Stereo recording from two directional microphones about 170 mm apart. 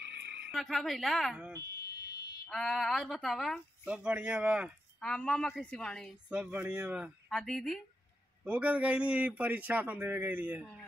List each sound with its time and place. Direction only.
0.0 s a sound: 90° right
0.5 s speech: centre (ahead or behind)
1.8 s fire alarm: 65° left (ahead or behind)
2.5 s a man's voice: centre (ahead or behind)